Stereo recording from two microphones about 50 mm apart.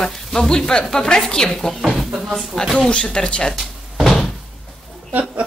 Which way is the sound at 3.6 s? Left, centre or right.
Centre.